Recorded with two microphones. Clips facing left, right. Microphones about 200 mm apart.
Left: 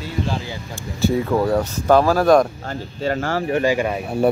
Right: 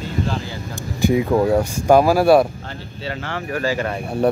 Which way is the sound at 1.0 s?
15° right (ahead or behind).